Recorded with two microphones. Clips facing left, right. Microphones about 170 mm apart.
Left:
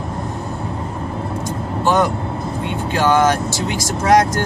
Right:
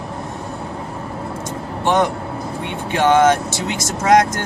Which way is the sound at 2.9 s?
20° right (ahead or behind).